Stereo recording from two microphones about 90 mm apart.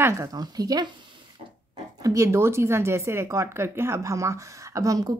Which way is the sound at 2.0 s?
35° right (ahead or behind).